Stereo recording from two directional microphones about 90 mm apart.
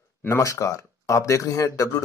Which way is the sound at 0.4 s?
35° left (ahead or behind).